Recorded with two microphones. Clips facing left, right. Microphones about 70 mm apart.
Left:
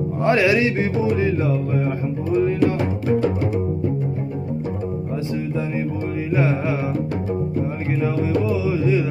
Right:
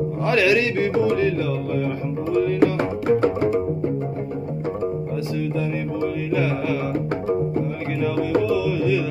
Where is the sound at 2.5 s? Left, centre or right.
Right.